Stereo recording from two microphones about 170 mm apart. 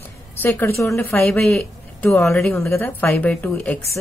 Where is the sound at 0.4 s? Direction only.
15° left (ahead or behind).